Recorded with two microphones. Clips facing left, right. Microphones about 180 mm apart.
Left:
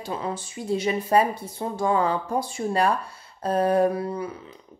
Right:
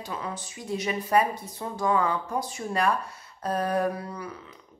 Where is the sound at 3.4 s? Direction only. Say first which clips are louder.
Left 6 dB; 25° left (ahead or behind).